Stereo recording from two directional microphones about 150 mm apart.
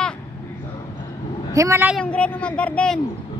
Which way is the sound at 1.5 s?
20° right (ahead or behind).